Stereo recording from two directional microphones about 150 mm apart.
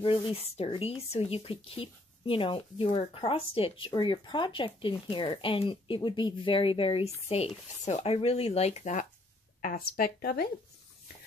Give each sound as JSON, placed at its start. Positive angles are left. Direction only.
{"t": 0.0, "sound": "speech", "side_deg": 35}
{"t": 9.6, "sound": "speech", "side_deg": 80}